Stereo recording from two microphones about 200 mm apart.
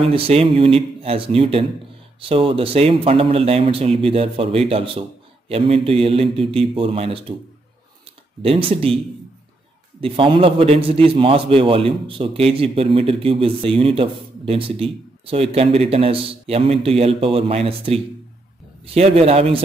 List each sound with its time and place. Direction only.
0.0 s a man's voice: 30° right (ahead or behind)
8.4 s a man's voice: 25° right (ahead or behind)